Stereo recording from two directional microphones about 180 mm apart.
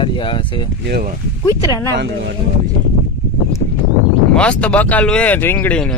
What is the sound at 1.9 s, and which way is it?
Speech, 75° right (ahead or behind).